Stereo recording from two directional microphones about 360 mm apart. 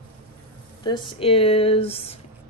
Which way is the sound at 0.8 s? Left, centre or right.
Centre.